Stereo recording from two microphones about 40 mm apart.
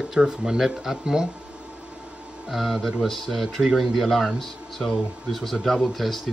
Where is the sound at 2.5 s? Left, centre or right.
Centre.